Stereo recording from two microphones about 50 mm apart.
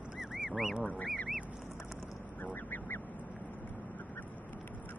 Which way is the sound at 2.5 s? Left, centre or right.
Left.